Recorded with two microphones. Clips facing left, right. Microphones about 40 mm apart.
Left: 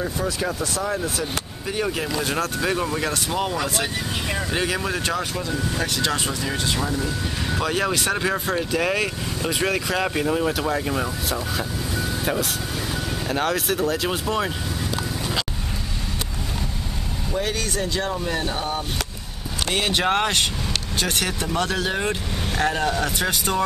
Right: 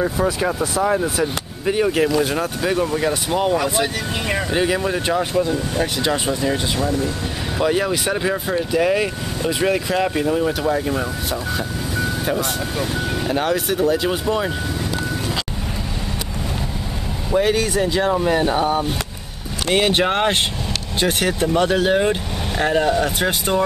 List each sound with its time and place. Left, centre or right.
0.0 s speech: centre
3.5 s speech: right
4.5 s speech: centre
5.0 s speech: centre
13.3 s speech: centre
17.4 s speech: centre
19.7 s speech: right